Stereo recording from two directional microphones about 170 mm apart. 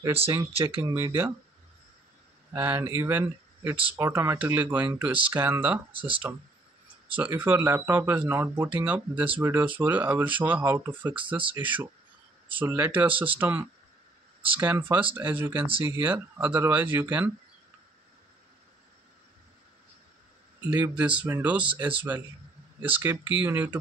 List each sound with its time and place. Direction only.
0.5 s speech: 35° right (ahead or behind)
0.8 s speech: 20° right (ahead or behind)
2.5 s speech: 15° right (ahead or behind)
5.9 s speech: 30° right (ahead or behind)
7.2 s speech: 10° right (ahead or behind)
20.7 s speech: 10° right (ahead or behind)